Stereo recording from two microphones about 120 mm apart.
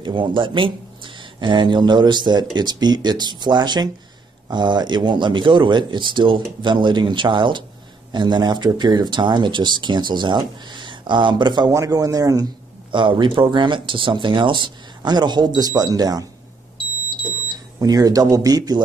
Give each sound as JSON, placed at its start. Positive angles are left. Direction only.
{"t": 0.0, "sound": "speech", "side_deg": -40}
{"t": 12.9, "sound": "speech", "side_deg": -45}
{"t": 17.7, "sound": "speech", "side_deg": -30}